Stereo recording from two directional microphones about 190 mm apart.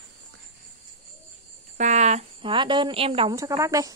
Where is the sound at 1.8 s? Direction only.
40° right (ahead or behind).